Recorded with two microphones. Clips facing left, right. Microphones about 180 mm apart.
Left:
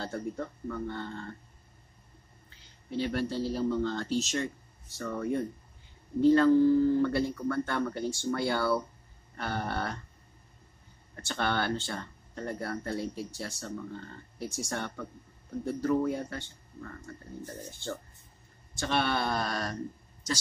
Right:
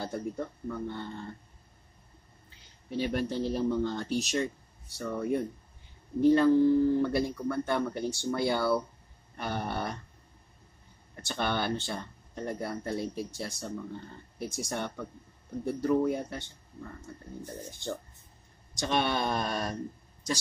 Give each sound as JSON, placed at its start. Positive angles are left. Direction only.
{"t": 0.0, "sound": "speech", "side_deg": -15}
{"t": 3.0, "sound": "speech", "side_deg": -20}
{"t": 11.1, "sound": "speech", "side_deg": -15}
{"t": 18.8, "sound": "speech", "side_deg": -15}